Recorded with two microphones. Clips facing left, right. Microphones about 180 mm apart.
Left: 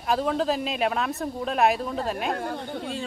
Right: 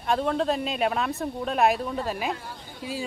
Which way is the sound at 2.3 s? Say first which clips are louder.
Left 6 dB; 55° left (ahead or behind).